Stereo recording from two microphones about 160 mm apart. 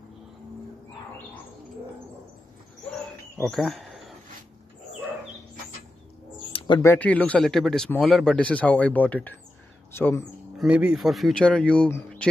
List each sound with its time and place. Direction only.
3.4 s speech: centre (ahead or behind)
6.8 s speech: 15° left (ahead or behind)
10.6 s speech: 5° right (ahead or behind)